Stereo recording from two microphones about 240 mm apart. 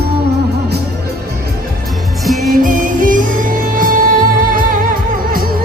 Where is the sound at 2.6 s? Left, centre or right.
Right.